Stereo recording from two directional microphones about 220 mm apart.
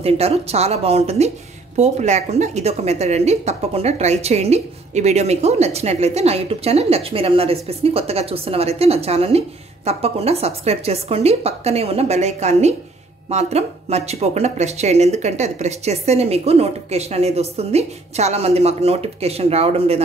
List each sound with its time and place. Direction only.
0.0 s a woman's voice: 25° right (ahead or behind)